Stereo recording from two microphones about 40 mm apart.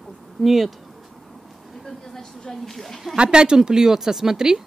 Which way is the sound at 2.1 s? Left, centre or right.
Centre.